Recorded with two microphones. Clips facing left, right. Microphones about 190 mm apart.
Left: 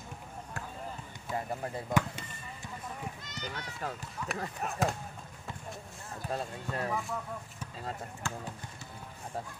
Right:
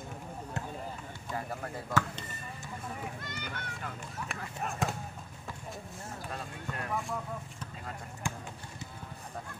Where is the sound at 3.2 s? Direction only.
55° right (ahead or behind).